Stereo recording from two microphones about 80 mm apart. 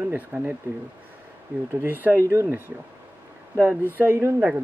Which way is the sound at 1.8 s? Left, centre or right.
Right.